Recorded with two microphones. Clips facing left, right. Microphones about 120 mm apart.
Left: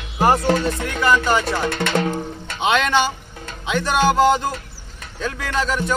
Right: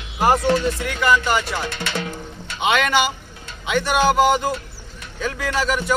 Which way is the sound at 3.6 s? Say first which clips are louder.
Even; 5° right (ahead or behind).